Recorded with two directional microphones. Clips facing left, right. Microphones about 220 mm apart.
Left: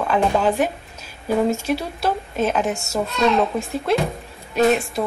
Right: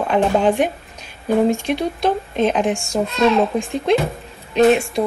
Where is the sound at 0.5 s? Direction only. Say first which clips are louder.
Right 2 dB; 5° left (ahead or behind).